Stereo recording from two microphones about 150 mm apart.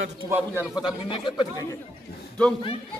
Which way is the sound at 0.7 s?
30° left (ahead or behind).